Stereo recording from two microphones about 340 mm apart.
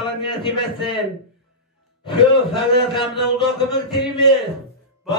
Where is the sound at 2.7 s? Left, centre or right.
Centre.